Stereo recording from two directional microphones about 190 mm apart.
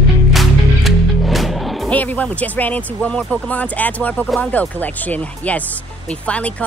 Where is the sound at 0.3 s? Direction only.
Centre (ahead or behind).